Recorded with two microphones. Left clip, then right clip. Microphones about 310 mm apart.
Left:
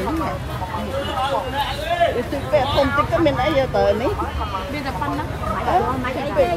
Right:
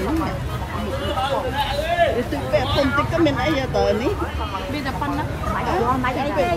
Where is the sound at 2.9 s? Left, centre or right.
Left.